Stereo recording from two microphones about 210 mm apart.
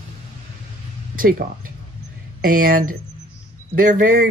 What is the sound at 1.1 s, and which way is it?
Speech, 45° right (ahead or behind).